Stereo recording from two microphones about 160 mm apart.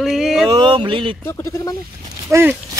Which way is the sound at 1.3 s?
20° left (ahead or behind).